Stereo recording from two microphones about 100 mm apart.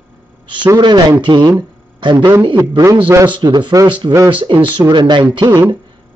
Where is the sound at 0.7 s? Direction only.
50° right (ahead or behind).